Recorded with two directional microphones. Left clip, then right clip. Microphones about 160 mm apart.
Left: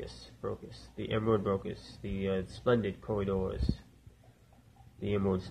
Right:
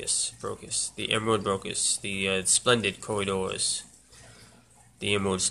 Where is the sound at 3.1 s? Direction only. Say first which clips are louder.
Right 1 dB; 25° right (ahead or behind).